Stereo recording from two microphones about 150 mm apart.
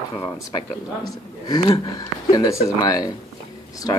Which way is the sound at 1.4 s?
25° left (ahead or behind).